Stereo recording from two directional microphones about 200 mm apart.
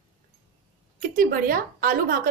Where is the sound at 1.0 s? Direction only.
45° right (ahead or behind).